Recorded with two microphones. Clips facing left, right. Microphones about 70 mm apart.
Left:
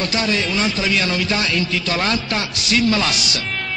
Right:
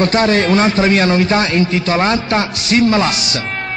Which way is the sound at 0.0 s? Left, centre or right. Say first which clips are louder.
Right 8 dB; right.